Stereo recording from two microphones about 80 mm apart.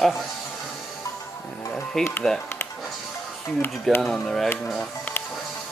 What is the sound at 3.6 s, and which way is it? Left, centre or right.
Speech, left.